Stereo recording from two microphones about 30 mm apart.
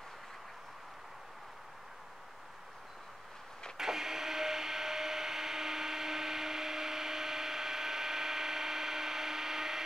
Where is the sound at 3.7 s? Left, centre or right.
Centre.